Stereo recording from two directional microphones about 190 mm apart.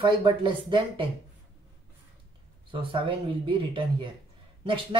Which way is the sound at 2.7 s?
25° right (ahead or behind).